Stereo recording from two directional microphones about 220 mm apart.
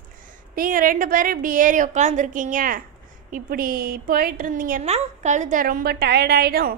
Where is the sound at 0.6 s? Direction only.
40° right (ahead or behind).